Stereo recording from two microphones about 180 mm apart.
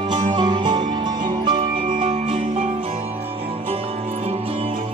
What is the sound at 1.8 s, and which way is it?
Music, 45° right (ahead or behind).